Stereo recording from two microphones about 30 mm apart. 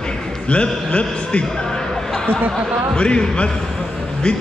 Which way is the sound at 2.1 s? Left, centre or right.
Left.